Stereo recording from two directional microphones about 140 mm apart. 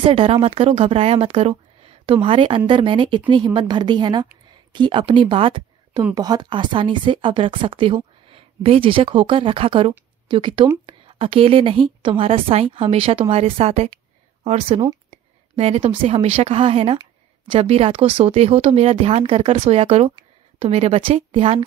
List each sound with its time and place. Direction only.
0.0 s speech: 40° right (ahead or behind)
15.0 s a sound: 50° right (ahead or behind)
16.0 s speech: 45° right (ahead or behind)